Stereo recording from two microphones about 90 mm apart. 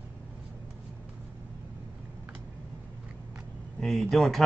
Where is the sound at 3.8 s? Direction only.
5° left (ahead or behind).